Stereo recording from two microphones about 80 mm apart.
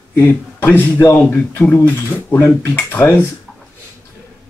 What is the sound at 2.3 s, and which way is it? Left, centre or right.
Speech, left.